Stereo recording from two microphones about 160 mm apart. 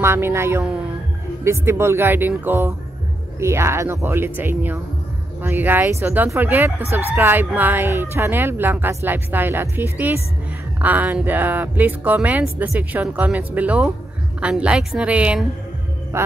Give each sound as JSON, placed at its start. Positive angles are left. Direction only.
{"t": 0.0, "sound": "speech", "side_deg": -15}